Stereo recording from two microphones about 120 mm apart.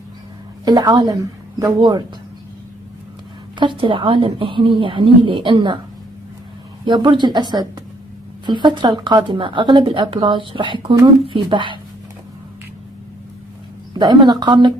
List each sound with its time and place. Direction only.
0.7 s a woman's voice: 35° right (ahead or behind)
3.5 s speech: 45° right (ahead or behind)
6.9 s a woman's voice: 40° right (ahead or behind)
13.9 s a woman's voice: 35° right (ahead or behind)